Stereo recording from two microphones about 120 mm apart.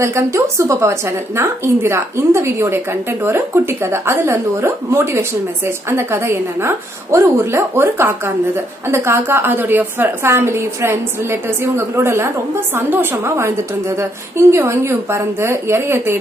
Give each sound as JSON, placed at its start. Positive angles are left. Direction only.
{"t": 0.0, "sound": "a woman's voice", "side_deg": -25}